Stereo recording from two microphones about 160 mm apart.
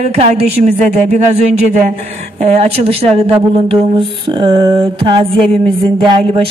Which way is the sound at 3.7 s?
30° right (ahead or behind).